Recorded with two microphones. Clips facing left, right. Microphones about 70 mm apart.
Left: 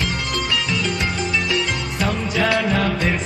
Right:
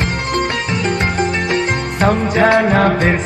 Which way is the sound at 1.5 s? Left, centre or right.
Right.